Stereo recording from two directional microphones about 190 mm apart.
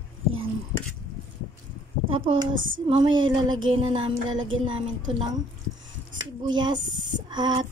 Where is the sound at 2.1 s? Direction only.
25° right (ahead or behind).